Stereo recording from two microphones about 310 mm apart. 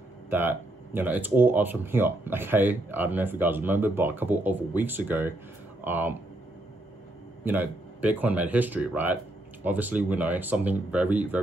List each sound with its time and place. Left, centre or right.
0.3 s speech: centre
7.4 s speech: centre